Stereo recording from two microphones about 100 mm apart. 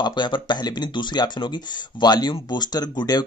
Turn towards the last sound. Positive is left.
turn(degrees=45)  # may be behind; listen again after turning